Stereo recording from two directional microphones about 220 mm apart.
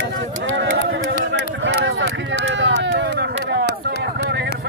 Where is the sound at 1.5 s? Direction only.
55° right (ahead or behind).